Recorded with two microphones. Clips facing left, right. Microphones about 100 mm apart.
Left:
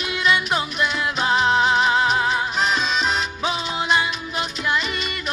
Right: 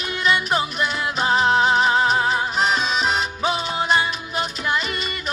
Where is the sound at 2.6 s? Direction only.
40° right (ahead or behind).